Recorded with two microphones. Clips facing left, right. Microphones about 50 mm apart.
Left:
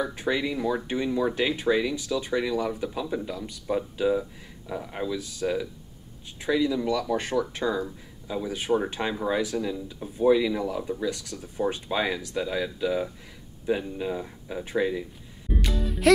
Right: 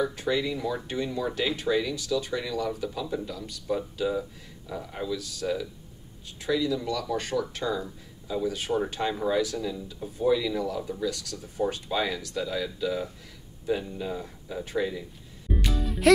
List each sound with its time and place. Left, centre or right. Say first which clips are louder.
0.0 s speech: even; centre
15.5 s music: even; centre